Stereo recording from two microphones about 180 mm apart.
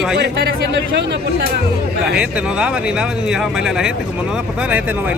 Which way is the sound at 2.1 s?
5° right (ahead or behind).